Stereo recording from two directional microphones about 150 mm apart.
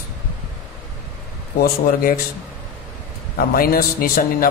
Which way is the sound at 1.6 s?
75° left (ahead or behind).